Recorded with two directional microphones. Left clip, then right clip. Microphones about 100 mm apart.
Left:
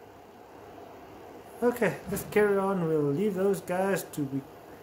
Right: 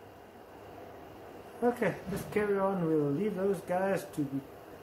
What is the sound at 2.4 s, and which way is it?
Speech, 70° left (ahead or behind).